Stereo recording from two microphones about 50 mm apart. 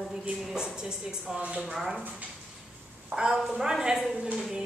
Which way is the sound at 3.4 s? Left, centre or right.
Centre.